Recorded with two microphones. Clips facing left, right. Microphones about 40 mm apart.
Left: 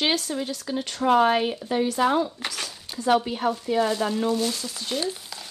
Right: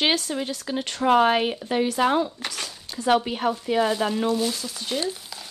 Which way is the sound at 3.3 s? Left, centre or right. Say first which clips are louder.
Right 1 dB; right.